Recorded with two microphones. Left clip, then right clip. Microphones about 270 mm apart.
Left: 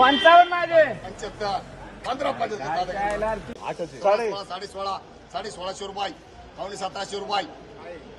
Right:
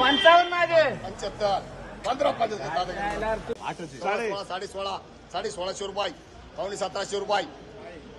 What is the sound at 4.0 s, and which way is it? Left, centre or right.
Speech, centre.